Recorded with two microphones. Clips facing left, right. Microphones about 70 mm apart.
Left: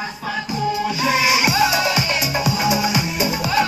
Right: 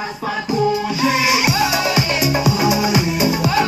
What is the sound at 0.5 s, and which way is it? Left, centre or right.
Music, centre.